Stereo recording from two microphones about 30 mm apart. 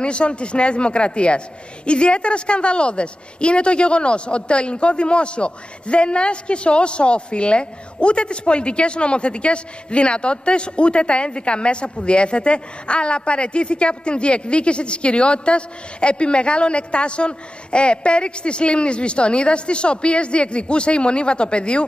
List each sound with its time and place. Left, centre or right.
0.0 s a woman's voice: left